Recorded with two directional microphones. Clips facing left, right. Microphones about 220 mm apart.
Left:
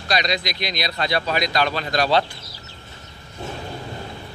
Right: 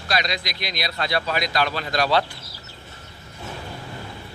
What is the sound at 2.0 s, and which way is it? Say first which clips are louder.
Speech: left 1 dB; 20° left (ahead or behind).